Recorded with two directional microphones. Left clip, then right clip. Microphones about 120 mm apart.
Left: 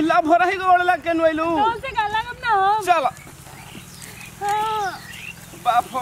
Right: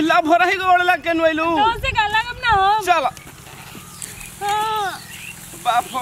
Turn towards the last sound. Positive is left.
turn(degrees=5)  # may be behind; listen again after turning